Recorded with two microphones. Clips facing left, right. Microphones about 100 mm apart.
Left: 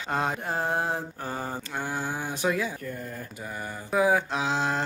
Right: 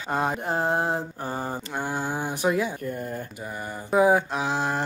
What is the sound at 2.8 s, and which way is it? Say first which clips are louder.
Speech: right 5 dB; 30° right (ahead or behind).